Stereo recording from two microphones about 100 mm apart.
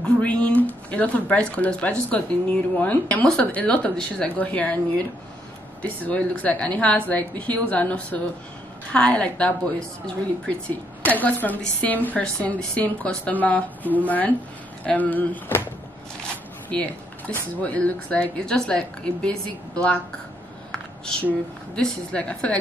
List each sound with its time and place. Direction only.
0.0 s a woman's voice: 10° left (ahead or behind)
16.7 s a woman's voice: 15° left (ahead or behind)
20.7 s a sound: 5° left (ahead or behind)
21.7 s a woman's voice: 10° left (ahead or behind)